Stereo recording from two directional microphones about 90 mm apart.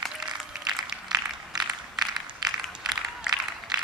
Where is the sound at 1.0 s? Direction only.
50° right (ahead or behind).